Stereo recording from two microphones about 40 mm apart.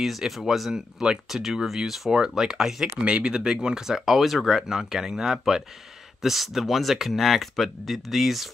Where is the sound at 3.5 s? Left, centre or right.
Centre.